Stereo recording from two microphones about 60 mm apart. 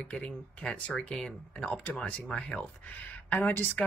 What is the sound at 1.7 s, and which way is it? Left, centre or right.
Speech, left.